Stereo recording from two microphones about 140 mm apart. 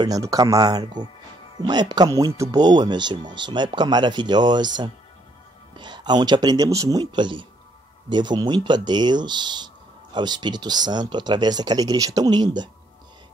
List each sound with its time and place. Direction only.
0.0 s speech: 25° right (ahead or behind)
5.8 s speech: 30° right (ahead or behind)